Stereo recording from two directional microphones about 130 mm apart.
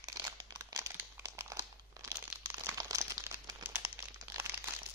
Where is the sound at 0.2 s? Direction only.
30° right (ahead or behind).